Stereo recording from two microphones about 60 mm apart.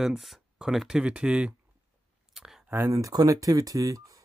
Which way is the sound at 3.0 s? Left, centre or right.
Right.